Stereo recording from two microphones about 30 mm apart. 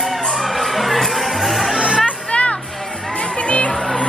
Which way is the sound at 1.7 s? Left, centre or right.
Right.